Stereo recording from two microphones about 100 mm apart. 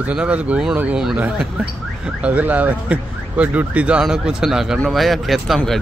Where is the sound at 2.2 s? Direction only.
15° right (ahead or behind).